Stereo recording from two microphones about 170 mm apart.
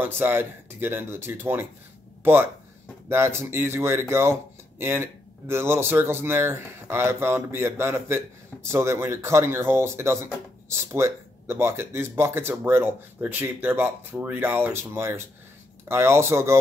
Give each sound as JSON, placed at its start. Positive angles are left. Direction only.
{"t": 0.0, "sound": "speech", "side_deg": -15}